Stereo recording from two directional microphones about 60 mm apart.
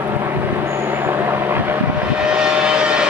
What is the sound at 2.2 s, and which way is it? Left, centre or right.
Vehicle, centre.